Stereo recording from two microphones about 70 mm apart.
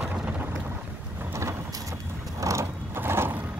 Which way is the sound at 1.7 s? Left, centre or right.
Right.